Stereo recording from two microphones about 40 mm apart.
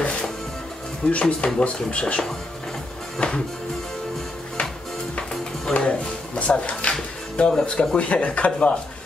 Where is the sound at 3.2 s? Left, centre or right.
Left.